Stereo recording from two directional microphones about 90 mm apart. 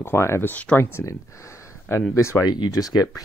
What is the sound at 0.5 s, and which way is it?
Speech, 15° left (ahead or behind).